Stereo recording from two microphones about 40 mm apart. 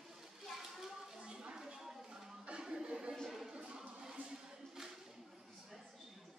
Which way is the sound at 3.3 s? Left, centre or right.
Centre.